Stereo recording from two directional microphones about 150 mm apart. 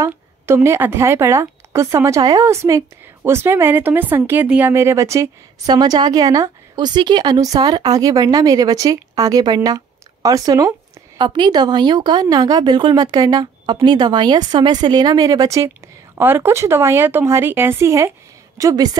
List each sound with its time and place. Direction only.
0.7 s speech: 15° right (ahead or behind)